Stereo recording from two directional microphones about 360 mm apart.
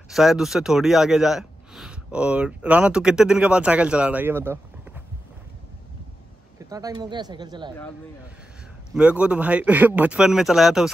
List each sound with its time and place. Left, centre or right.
0.1 s speech: centre
6.7 s speech: centre
8.9 s speech: centre